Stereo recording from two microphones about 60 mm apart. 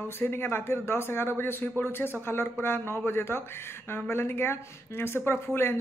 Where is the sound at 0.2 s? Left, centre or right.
Left.